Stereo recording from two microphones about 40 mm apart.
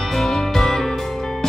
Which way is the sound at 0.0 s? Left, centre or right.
Centre.